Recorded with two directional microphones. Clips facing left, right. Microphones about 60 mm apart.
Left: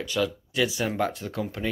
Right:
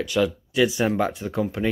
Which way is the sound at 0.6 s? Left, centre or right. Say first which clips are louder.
Right 5 dB; right.